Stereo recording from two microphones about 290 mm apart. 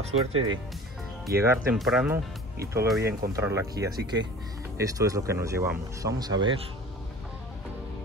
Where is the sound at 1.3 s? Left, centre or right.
Right.